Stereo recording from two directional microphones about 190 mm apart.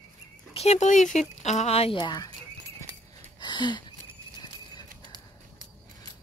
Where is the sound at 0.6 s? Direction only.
35° left (ahead or behind).